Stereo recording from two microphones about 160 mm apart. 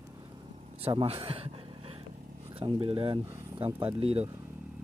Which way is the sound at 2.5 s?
35° right (ahead or behind).